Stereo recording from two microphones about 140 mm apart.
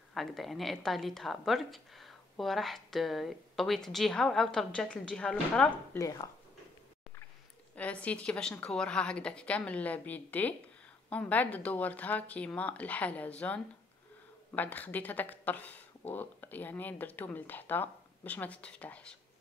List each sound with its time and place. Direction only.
0.1 s a woman's voice: centre (ahead or behind)
5.9 s speech: 25° left (ahead or behind)
7.7 s speech: 10° left (ahead or behind)